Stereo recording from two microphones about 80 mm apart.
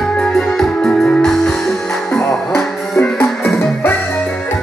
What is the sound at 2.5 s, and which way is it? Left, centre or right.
Music, left.